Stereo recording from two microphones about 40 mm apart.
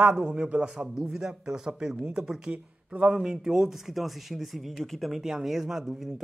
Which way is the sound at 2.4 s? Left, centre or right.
Right.